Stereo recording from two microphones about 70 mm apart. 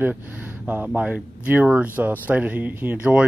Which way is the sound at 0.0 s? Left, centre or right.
Right.